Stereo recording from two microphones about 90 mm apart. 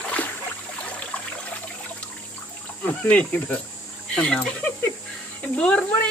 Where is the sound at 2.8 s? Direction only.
15° left (ahead or behind).